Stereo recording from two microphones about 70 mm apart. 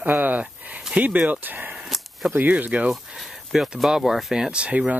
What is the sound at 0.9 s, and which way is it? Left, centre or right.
Speech, centre.